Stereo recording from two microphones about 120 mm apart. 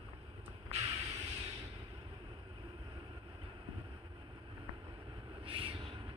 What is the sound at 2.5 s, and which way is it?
Vehicle, 35° right (ahead or behind).